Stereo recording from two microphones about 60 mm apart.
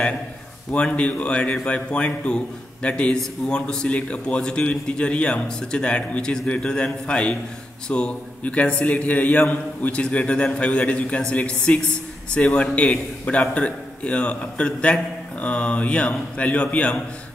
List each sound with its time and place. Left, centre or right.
0.7 s a man's voice: left